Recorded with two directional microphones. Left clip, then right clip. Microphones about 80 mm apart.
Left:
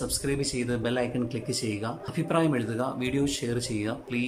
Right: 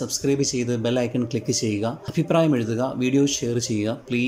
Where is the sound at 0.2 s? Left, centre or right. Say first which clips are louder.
Right 10 dB; right.